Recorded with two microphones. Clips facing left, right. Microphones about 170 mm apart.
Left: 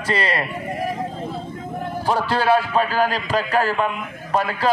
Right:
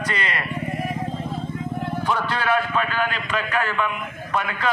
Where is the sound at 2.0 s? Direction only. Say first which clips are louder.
Left 5 dB; 30° left (ahead or behind).